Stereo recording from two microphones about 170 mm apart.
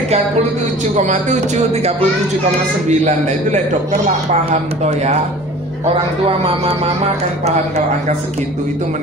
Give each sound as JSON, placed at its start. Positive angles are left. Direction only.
{"t": 0.9, "sound": "a man's voice", "side_deg": -45}
{"t": 6.2, "sound": "speech", "side_deg": -35}